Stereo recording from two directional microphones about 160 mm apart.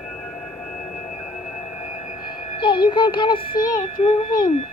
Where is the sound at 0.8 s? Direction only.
45° left (ahead or behind).